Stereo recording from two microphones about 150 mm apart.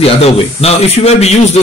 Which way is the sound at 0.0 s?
40° left (ahead or behind).